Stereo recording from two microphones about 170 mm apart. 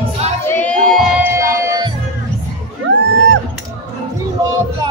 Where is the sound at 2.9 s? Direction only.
90° right.